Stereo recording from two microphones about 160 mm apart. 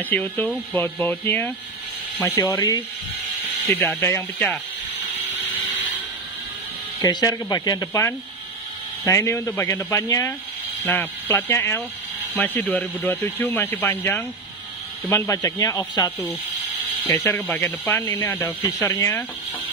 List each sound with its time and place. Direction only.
0.1 s speech: 10° left (ahead or behind)
3.6 s speech: centre (ahead or behind)
4.0 s speech: 15° left (ahead or behind)
7.0 s speech: 25° left (ahead or behind)
17.0 s speech: 20° left (ahead or behind)
17.3 s speech: 10° left (ahead or behind)